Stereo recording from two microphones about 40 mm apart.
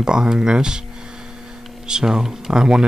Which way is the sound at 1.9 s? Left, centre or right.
Centre.